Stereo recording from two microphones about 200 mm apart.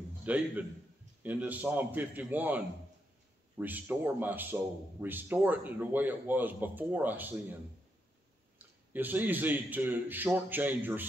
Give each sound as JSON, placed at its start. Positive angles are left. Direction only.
{"t": 0.2, "sound": "a man's voice", "side_deg": -5}
{"t": 8.5, "sound": "a man's voice", "side_deg": -10}